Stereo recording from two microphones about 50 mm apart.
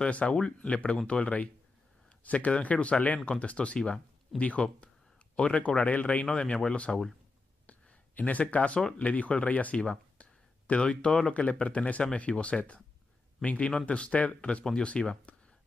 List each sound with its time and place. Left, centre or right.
0.0 s speech: left
6.2 s speech: left
7.6 s a sound: left
8.9 s speech: left
14.6 s speech: centre
14.9 s speech: left